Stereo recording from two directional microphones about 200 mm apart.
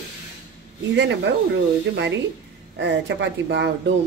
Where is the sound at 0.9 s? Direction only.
60° right (ahead or behind).